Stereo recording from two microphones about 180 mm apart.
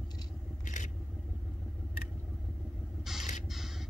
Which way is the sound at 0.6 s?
45° left (ahead or behind).